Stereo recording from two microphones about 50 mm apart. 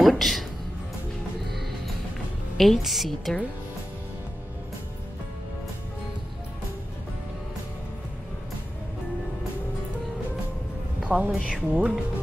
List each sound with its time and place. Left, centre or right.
0.0 s speech: centre
2.5 s a woman's voice: centre
11.1 s a woman's voice: right